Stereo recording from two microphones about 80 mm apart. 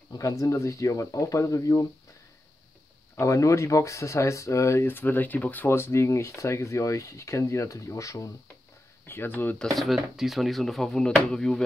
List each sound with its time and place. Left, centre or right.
0.1 s speech: left
3.2 s speech: left
4.8 s speech: left
9.0 s speech: left
9.8 s speech: centre